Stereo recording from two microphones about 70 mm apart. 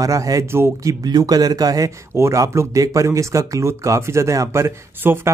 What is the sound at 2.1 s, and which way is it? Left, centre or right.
Speech, right.